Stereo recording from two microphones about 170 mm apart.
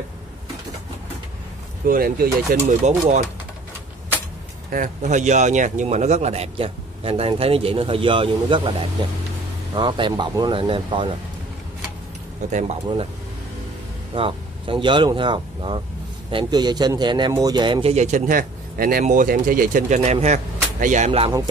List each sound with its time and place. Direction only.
1.9 s speech: 60° right (ahead or behind)
2.7 s speech: 45° right (ahead or behind)
4.6 s a man's voice: 50° right (ahead or behind); by 11.1 s 30° right (ahead or behind)
12.4 s speech: 45° right (ahead or behind)
14.1 s a man's voice: 30° right (ahead or behind)
17.9 s speech: 45° right (ahead or behind)